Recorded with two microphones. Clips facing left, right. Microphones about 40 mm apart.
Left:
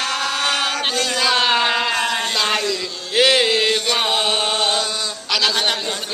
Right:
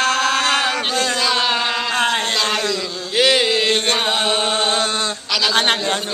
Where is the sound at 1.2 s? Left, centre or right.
Centre.